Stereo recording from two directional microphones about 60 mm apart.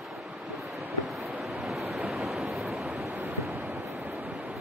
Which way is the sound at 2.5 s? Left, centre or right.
Centre.